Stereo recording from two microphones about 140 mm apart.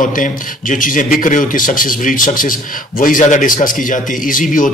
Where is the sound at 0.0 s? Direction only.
70° left (ahead or behind).